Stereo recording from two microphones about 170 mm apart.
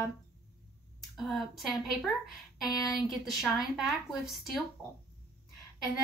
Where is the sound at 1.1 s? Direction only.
Centre (ahead or behind).